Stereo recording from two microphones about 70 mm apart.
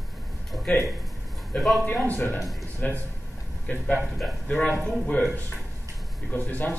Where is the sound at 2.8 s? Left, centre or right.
Left.